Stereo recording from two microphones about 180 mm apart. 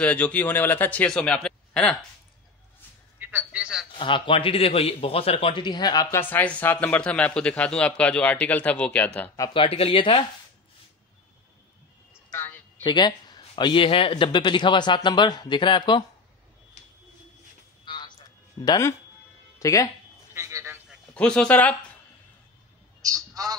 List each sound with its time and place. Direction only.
0.0 s a man's voice: 5° left (ahead or behind)
3.2 s music: 10° right (ahead or behind)
3.9 s a man's voice: 30° left (ahead or behind)
6.3 s a man's voice: 10° left (ahead or behind)
9.5 s a man's voice: 30° left (ahead or behind)
12.3 s a sound: 15° left (ahead or behind)
12.8 s a man's voice: 25° left (ahead or behind)
17.8 s a sound: 25° left (ahead or behind)
18.6 s a man's voice: 20° left (ahead or behind)
20.3 s a sound: 15° right (ahead or behind)
21.1 s a man's voice: 5° left (ahead or behind)
23.0 s a man's voice: 20° right (ahead or behind)